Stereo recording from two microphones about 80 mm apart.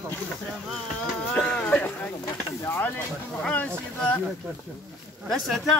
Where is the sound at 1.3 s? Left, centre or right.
Centre.